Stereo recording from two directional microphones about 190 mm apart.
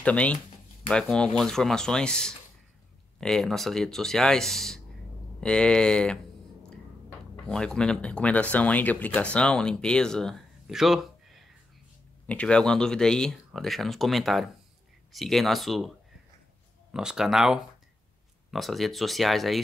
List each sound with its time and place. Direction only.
0.0 s speech: 5° left (ahead or behind)
16.9 s speech: 5° right (ahead or behind)